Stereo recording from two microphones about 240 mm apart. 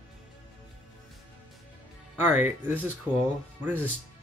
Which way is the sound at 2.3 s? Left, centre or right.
Centre.